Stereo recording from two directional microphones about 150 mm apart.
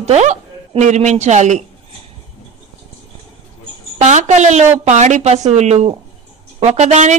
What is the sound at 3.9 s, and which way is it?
Speech, 50° right (ahead or behind).